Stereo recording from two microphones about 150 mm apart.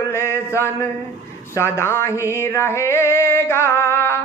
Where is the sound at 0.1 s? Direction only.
15° left (ahead or behind).